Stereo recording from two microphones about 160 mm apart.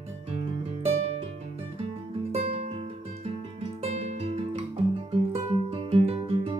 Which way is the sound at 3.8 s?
40° right (ahead or behind).